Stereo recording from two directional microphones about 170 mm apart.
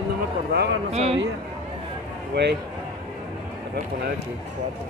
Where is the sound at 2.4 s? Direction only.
90° right.